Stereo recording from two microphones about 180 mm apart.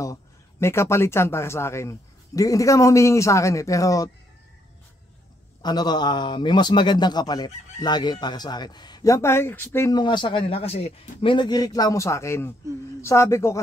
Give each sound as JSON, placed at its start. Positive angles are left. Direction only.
{"t": 0.0, "sound": "a man's voice", "side_deg": 15}
{"t": 5.6, "sound": "a man's voice", "side_deg": 20}